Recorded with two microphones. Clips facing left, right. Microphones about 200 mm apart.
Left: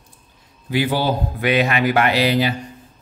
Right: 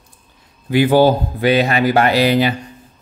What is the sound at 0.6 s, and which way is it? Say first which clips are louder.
Speech: right 8 dB; 50° right (ahead or behind).